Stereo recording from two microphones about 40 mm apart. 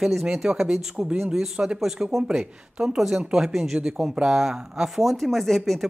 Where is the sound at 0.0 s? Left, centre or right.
Centre.